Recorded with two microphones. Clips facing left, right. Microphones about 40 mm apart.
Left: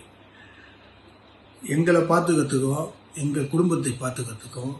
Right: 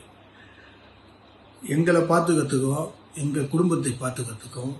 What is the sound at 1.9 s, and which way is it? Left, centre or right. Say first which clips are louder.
A man's voice: left 1 dB; left.